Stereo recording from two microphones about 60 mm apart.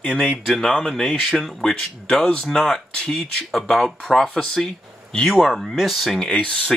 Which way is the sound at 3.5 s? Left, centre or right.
Centre.